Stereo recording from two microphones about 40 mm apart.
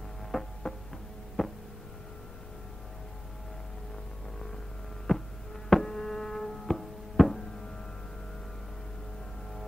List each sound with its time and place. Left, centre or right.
0.3 s music: centre
1.4 s a sound: centre
5.1 s hum: centre
5.7 s music: centre